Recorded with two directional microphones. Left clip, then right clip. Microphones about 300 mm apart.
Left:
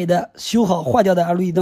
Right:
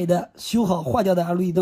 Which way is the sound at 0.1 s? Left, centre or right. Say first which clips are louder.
Left 6 dB; right.